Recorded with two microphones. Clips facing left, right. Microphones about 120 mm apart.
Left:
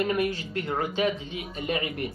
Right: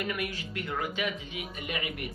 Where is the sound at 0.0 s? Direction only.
30° left (ahead or behind).